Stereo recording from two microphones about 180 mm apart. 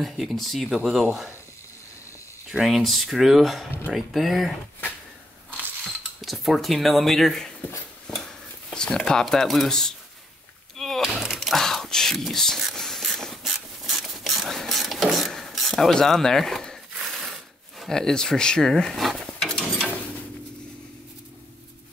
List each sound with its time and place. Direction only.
0.0 s speech: centre (ahead or behind)
2.5 s speech: centre (ahead or behind)
6.2 s speech: centre (ahead or behind)
10.8 s a sound: centre (ahead or behind)
17.7 s speech: 5° left (ahead or behind)